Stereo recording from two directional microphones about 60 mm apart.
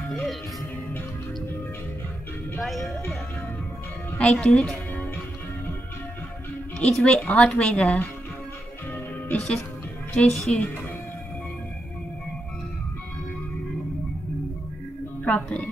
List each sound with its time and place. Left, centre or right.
0.1 s music: centre
2.6 s speech: centre
4.2 s a woman's voice: centre
6.8 s speech: centre
10.1 s a woman's voice: centre
15.2 s a woman's voice: left